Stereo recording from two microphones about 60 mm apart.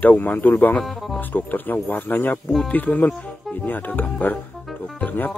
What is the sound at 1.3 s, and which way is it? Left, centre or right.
Speech, left.